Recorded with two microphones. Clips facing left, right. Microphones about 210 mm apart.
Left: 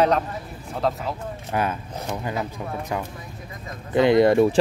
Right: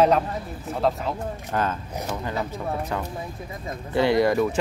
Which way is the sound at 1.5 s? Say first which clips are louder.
Left 1 dB; 10° left (ahead or behind).